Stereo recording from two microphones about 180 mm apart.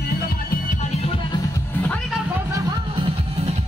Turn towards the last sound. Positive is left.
turn(degrees=-20)  # may be behind; listen again after turning